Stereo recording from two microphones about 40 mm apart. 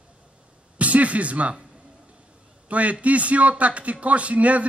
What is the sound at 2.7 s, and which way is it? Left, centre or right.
A man's voice, right.